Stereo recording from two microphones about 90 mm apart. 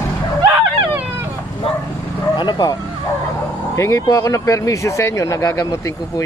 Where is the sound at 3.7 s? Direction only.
30° left (ahead or behind).